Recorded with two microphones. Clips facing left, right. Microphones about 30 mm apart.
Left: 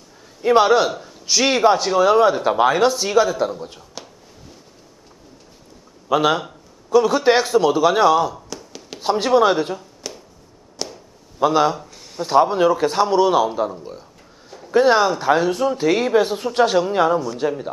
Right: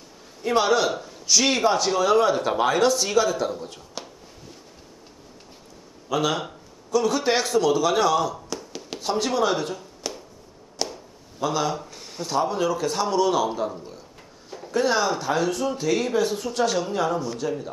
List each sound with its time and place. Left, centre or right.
0.4 s a man's voice: centre
6.0 s a man's voice: left
8.5 s chopping: centre
9.0 s a man's voice: left
9.8 s a sound: centre
10.8 s chop: centre
11.4 s a man's voice: left
14.7 s a man's voice: left